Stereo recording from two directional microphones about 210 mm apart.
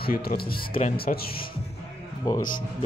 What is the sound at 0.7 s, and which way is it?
Speech, 30° left (ahead or behind).